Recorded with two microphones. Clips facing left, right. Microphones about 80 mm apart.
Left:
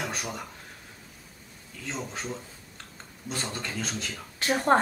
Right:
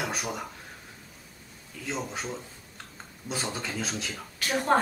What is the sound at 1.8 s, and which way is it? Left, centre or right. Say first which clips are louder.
A man's voice: right 2 dB; centre.